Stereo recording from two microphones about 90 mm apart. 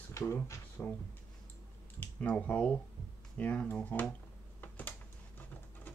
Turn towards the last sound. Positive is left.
turn(degrees=20)  # may be behind; listen again after turning